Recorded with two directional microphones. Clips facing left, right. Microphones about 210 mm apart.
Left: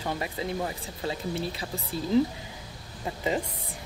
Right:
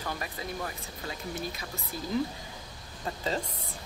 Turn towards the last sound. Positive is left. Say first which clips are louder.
# left 3 dB
turn(degrees=15)  # may be behind; listen again after turning